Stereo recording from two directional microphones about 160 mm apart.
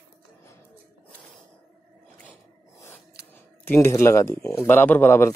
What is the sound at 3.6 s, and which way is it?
Speech, 15° left (ahead or behind).